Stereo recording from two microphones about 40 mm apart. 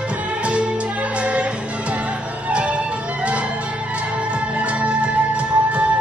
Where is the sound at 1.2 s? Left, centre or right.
Right.